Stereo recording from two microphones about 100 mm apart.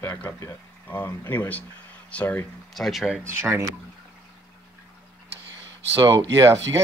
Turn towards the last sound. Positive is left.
turn(degrees=-30)  # may be behind; listen again after turning